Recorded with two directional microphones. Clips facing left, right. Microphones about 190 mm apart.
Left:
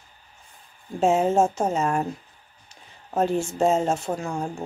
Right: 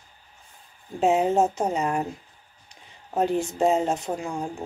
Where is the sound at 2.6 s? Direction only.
15° right (ahead or behind).